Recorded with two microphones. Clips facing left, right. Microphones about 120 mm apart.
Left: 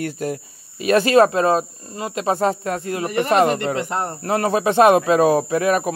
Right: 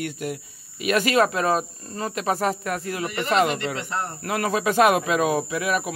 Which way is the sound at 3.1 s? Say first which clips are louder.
Left 5 dB; 40° left (ahead or behind).